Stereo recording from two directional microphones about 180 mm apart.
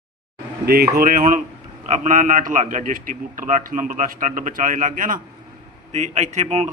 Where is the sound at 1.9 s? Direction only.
45° right (ahead or behind).